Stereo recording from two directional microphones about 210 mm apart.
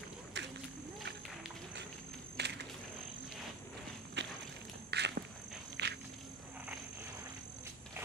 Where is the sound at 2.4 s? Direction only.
55° right (ahead or behind).